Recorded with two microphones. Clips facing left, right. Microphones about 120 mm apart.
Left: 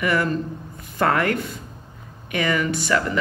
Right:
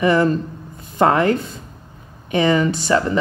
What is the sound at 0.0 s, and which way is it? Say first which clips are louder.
A woman's voice: right 6 dB; 25° right (ahead or behind).